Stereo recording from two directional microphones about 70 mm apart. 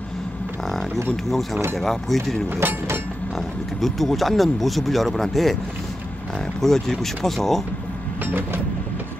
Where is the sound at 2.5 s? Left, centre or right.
Right.